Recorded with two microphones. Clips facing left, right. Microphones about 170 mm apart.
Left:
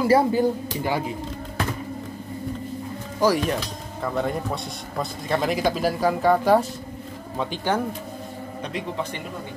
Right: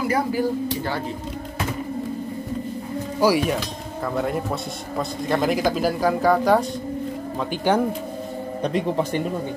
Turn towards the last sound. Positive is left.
turn(degrees=-10)  # may be behind; listen again after turning